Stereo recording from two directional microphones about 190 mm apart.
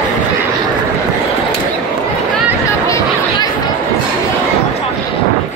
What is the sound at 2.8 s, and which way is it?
Chatter, 15° left (ahead or behind).